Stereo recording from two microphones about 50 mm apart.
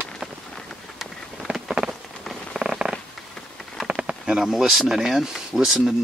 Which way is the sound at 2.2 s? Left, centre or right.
Centre.